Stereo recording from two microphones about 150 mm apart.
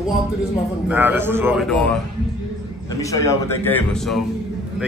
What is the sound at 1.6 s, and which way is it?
Speech, 5° left (ahead or behind).